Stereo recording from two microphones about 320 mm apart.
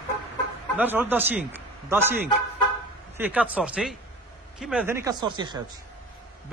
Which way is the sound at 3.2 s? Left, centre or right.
Centre.